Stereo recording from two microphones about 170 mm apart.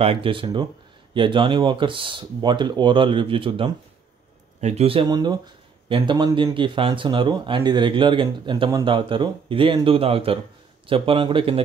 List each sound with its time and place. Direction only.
0.0 s speech: 30° right (ahead or behind)